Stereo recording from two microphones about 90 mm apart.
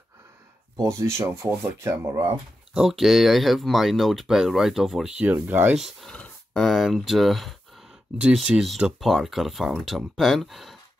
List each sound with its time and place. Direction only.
0.8 s speech: 35° right (ahead or behind)
2.7 s speech: 5° right (ahead or behind); by 5.8 s 20° right (ahead or behind)
5.8 s speech: 5° left (ahead or behind)
8.2 s speech: 10° right (ahead or behind)